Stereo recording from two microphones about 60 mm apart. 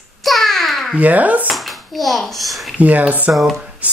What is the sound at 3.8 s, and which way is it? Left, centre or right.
Music, right.